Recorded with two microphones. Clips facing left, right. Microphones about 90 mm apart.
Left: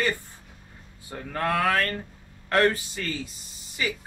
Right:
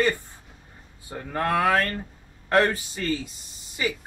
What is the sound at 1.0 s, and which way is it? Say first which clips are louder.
Speech: right 1 dB; 10° right (ahead or behind).